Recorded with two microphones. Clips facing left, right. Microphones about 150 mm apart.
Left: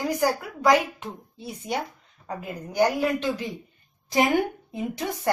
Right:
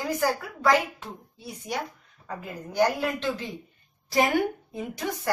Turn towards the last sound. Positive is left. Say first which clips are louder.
# left 2 dB
turn(degrees=25)  # may be behind; listen again after turning